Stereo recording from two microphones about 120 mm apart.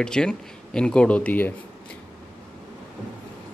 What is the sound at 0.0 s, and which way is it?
Speech, 5° left (ahead or behind).